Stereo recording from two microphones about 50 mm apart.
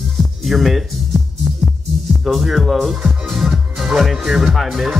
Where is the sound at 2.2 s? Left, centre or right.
Centre.